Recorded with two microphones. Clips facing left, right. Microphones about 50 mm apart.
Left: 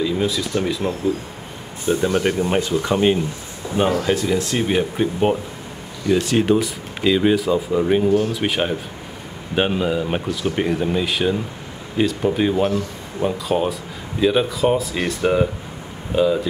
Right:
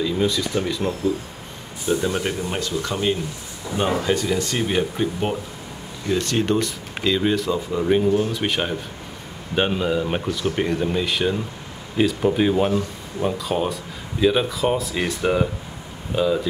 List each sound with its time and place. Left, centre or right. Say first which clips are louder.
0.0 s speech: left 1 dB; centre
1.9 s speech: left 4 dB; centre
2.4 s speech: left 6 dB; left
4.0 s speech: left 2 dB; centre